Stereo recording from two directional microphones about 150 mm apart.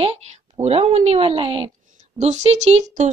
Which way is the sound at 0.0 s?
40° right (ahead or behind).